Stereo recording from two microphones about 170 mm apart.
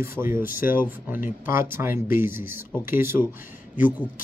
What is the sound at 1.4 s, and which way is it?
Speech, 15° right (ahead or behind).